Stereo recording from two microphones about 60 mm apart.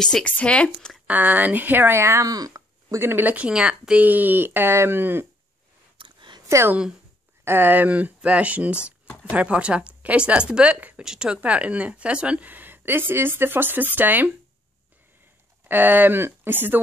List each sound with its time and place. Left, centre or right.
0.2 s speech: left
1.0 s speech: right
2.2 s a sound: right
3.0 s speech: right
3.3 s speech: centre
4.0 s speech: right
6.5 s a woman's voice: right
7.4 s speech: right
15.7 s speech: right